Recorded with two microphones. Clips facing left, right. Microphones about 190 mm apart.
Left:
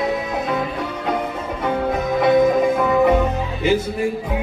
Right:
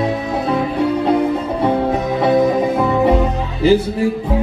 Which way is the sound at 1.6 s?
35° right (ahead or behind).